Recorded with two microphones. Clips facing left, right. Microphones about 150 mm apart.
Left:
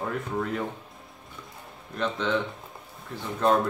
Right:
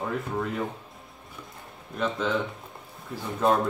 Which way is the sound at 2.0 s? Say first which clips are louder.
Even; 5° right (ahead or behind).